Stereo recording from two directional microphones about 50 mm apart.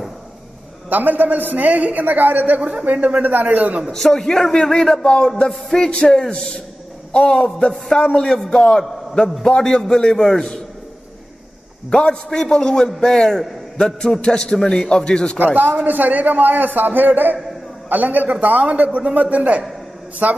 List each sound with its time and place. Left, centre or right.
0.8 s a man's voice: right
3.9 s a man's voice: centre
12.0 s a man's voice: centre
15.3 s a man's voice: right